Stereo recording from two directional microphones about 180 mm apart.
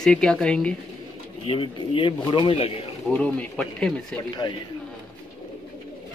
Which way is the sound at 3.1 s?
5° left (ahead or behind).